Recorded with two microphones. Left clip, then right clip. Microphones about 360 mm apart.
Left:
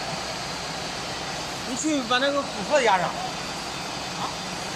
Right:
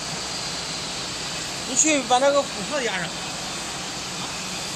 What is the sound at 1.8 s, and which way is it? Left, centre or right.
Speech, right.